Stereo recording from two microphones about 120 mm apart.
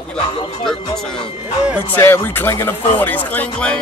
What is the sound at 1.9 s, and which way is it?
Speech, 20° left (ahead or behind).